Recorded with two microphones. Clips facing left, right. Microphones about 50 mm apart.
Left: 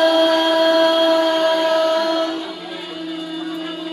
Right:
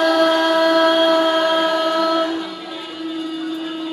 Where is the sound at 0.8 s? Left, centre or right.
Centre.